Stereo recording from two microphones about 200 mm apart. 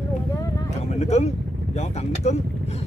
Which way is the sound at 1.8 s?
35° left (ahead or behind).